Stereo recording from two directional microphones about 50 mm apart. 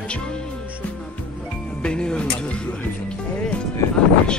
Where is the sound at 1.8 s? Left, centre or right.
Centre.